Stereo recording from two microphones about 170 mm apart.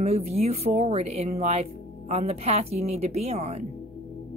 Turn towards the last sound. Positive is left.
turn(degrees=-40)  # may be behind; listen again after turning